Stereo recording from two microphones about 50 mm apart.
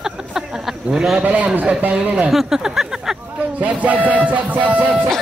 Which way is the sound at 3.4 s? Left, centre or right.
Right.